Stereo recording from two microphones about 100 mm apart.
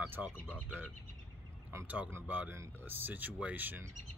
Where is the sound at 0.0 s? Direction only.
15° right (ahead or behind).